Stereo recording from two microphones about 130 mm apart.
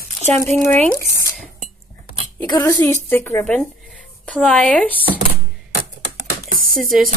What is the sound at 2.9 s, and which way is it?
Speech, 20° left (ahead or behind).